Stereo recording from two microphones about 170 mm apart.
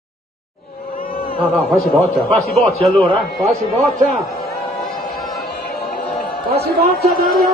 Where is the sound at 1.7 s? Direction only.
Centre (ahead or behind).